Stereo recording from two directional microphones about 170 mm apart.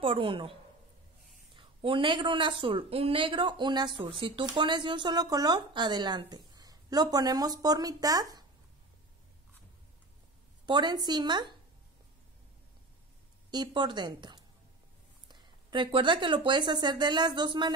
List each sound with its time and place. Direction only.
0.0 s a woman's voice: 30° right (ahead or behind)
1.6 s speech: 30° right (ahead or behind)
10.6 s speech: 25° right (ahead or behind)
13.5 s speech: 25° right (ahead or behind)